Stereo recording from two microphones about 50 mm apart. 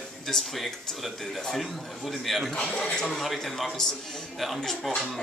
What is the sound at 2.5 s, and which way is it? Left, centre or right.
Speech, centre.